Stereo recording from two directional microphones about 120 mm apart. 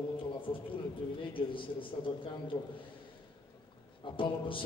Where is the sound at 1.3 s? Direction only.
45° left (ahead or behind).